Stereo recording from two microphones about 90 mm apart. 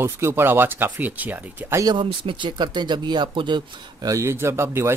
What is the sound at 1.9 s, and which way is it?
Speech, 70° right (ahead or behind).